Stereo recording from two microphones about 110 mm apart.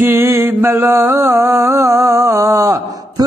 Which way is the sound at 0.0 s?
25° right (ahead or behind).